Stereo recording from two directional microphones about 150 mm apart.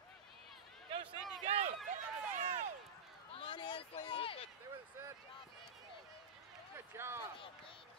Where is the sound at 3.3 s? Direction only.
35° left (ahead or behind).